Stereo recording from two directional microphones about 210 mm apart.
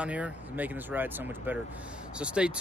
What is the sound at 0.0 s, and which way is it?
Speech, 5° right (ahead or behind).